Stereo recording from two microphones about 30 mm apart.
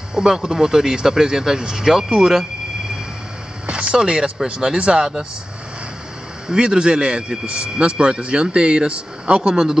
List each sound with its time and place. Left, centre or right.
0.1 s speech: right
0.4 s speech: centre
3.6 s a sound: right
4.5 s speech: right
6.5 s speech: right